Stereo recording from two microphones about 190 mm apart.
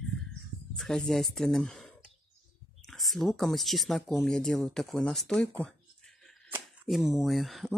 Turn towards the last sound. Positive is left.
turn(degrees=0)  # may be behind; listen again after turning